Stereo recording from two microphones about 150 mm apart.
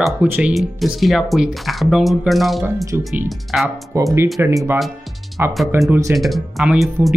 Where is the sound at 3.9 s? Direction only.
20° right (ahead or behind).